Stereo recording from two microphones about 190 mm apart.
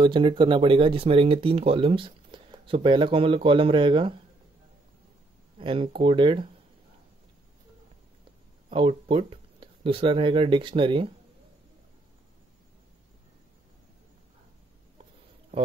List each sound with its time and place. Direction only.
0.0 s speech: 25° right (ahead or behind)
5.6 s speech: 25° right (ahead or behind)
8.6 s speech: 30° right (ahead or behind)